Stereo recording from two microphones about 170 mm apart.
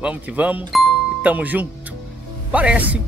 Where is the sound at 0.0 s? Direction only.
10° right (ahead or behind).